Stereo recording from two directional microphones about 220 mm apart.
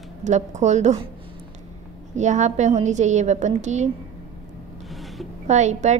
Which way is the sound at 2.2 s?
35° right (ahead or behind).